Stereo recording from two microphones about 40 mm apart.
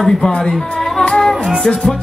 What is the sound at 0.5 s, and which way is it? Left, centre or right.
Music, centre.